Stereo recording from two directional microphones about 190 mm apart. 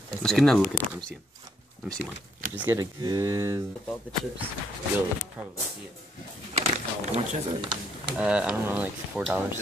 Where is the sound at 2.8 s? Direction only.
20° right (ahead or behind).